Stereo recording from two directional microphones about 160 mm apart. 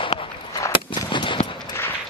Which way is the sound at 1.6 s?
15° left (ahead or behind).